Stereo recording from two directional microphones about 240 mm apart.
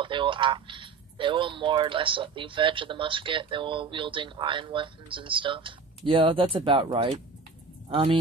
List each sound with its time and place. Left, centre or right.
0.0 s speech: right